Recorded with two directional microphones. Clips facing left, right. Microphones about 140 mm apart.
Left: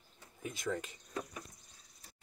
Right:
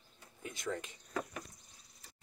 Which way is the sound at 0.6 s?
Centre (ahead or behind).